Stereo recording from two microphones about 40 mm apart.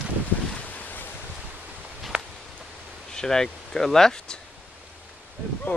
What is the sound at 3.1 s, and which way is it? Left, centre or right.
Speech, centre.